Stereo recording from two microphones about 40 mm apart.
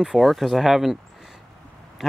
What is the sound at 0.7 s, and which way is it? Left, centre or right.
Speech, centre.